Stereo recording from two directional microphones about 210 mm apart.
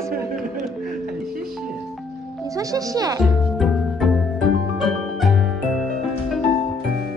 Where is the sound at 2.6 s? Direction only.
15° right (ahead or behind).